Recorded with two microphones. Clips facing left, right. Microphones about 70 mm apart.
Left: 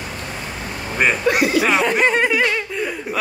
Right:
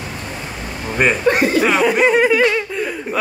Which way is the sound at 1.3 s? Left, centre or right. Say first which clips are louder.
Right 1 dB; right.